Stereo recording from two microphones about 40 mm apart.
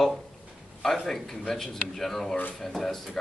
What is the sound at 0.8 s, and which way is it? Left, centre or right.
Speech, centre.